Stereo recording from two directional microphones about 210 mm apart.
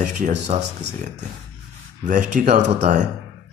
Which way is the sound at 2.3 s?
35° right (ahead or behind).